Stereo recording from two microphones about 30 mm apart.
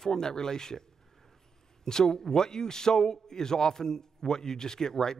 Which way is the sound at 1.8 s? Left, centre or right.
Left.